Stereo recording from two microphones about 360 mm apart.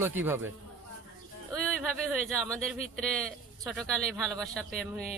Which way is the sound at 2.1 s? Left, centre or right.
Centre.